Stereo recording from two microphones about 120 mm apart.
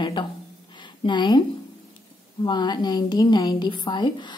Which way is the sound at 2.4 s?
40° left (ahead or behind).